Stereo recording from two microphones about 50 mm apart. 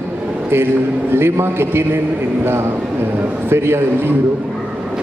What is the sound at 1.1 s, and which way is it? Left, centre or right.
Speech, right.